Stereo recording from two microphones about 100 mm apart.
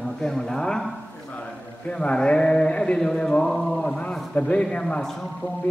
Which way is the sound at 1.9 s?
10° left (ahead or behind).